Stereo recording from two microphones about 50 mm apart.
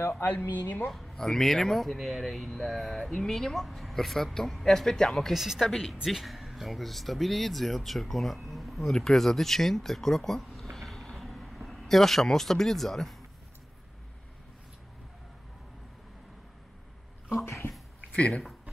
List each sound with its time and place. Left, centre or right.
0.2 s speech: left
0.9 s a sound: centre
1.2 s speech: centre
5.3 s a woman's voice: centre
18.1 s speech: left